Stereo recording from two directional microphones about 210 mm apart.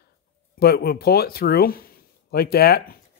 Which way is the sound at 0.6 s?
45° left (ahead or behind).